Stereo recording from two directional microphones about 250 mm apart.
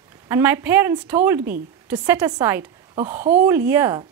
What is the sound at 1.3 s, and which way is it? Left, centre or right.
Speech, right.